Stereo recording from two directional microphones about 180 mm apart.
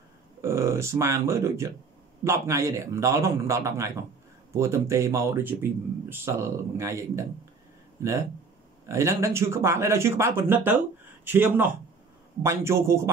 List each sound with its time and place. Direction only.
0.4 s speech: 15° right (ahead or behind)